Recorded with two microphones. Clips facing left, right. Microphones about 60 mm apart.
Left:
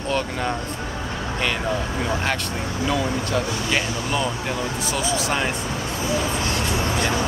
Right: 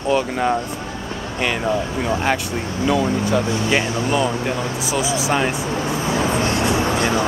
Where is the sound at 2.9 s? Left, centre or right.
Centre.